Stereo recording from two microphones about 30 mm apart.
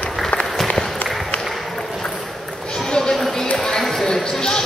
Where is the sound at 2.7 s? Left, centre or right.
Left.